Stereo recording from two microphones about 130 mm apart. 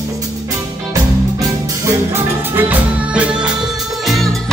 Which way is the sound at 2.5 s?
10° right (ahead or behind).